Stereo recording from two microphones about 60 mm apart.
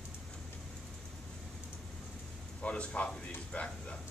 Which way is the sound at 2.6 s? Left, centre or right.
Centre.